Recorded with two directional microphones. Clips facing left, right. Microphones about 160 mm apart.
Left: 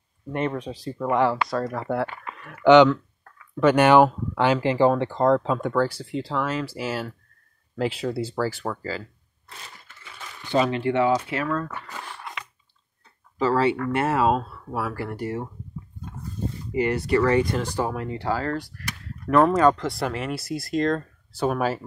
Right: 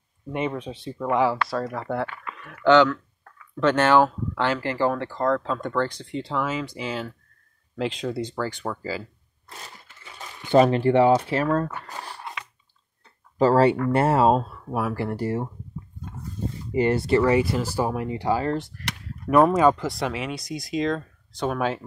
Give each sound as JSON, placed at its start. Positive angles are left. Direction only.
{"t": 0.3, "sound": "speech", "side_deg": -5}
{"t": 2.6, "sound": "speech", "side_deg": 20}
{"t": 10.1, "sound": "speech", "side_deg": -40}
{"t": 13.4, "sound": "speech", "side_deg": -40}
{"t": 14.4, "sound": "speech", "side_deg": -15}
{"t": 16.7, "sound": "speech", "side_deg": -30}
{"t": 17.2, "sound": "speech", "side_deg": -10}
{"t": 19.2, "sound": "speech", "side_deg": -10}
{"t": 19.9, "sound": "speech", "side_deg": 0}